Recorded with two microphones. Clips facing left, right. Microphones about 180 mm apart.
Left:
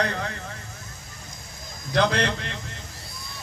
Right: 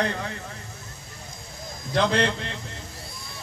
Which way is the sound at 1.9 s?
25° right (ahead or behind).